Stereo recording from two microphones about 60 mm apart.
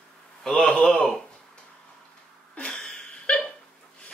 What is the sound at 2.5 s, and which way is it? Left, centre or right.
Hiccup, centre.